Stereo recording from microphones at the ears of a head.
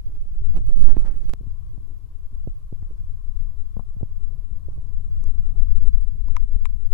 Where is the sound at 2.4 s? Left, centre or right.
Right.